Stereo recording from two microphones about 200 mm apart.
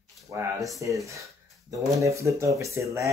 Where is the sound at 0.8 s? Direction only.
15° right (ahead or behind).